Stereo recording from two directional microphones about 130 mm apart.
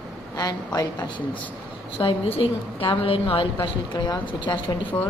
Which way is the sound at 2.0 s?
45° left (ahead or behind).